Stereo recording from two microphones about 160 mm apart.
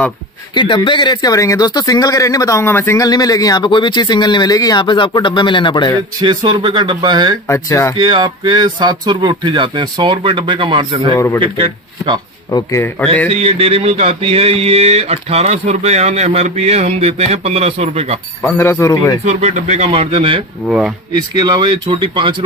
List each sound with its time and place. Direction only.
0.6 s speech: 30° left (ahead or behind)
6.2 s speech: 30° right (ahead or behind)
7.4 s a man's voice: 15° left (ahead or behind)
8.0 s speech: 25° right (ahead or behind)
11.1 s a man's voice: 15° left (ahead or behind)
11.4 s speech: 35° right (ahead or behind)
12.4 s speech: 20° left (ahead or behind)
13.3 s speech: 40° right (ahead or behind)
18.4 s a man's voice: 15° left (ahead or behind)
19.2 s speech: 45° right (ahead or behind)
20.6 s speech: 5° right (ahead or behind)
21.4 s speech: 25° right (ahead or behind)